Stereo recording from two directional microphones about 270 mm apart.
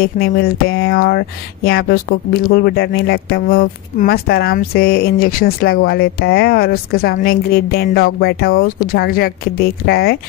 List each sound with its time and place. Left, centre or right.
0.0 s speech: left